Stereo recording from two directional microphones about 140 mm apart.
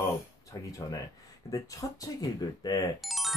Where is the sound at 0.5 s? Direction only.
25° left (ahead or behind).